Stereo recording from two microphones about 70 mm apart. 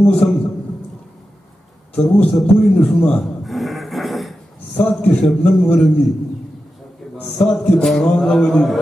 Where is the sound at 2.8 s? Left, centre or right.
Left.